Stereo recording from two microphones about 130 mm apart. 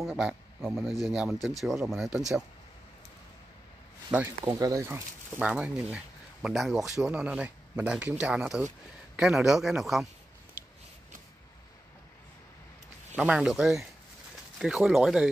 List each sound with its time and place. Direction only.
0.0 s a man's voice: 5° right (ahead or behind)
4.5 s a man's voice: 25° right (ahead or behind); by 10.0 s centre (ahead or behind)
13.1 s a man's voice: 10° right (ahead or behind)